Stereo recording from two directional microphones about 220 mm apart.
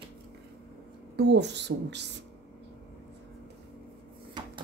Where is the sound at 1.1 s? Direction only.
50° right (ahead or behind).